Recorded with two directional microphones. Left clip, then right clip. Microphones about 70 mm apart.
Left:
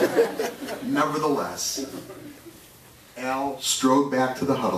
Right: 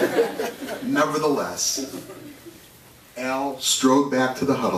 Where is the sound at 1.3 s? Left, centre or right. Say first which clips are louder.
Right 3 dB; centre.